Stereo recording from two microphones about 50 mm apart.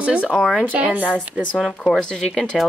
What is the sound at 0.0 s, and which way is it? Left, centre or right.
Speech, right.